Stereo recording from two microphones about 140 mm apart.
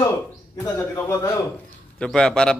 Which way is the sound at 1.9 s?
5° left (ahead or behind).